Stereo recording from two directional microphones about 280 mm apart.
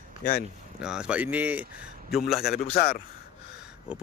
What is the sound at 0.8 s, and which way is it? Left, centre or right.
A man's voice, centre.